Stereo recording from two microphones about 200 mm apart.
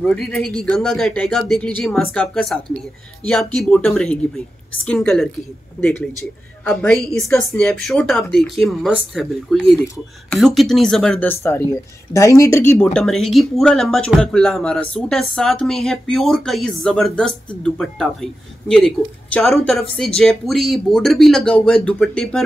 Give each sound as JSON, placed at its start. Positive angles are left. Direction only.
{"t": 0.0, "sound": "speech", "side_deg": 5}